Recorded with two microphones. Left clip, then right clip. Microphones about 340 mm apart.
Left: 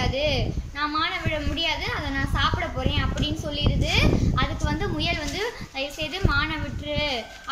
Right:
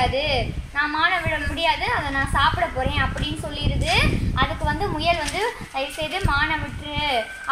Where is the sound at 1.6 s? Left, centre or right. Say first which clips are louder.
Right 6 dB; centre.